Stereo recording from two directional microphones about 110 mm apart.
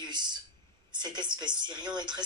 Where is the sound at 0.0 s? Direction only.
40° right (ahead or behind).